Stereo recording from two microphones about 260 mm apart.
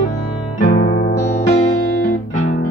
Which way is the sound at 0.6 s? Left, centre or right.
Left.